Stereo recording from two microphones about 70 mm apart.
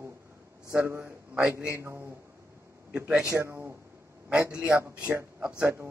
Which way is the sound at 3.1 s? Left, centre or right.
Centre.